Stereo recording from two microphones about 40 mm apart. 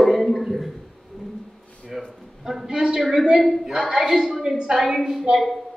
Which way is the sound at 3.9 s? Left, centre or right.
Centre.